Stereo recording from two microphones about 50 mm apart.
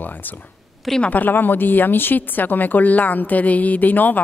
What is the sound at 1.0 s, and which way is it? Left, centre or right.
Speech, left.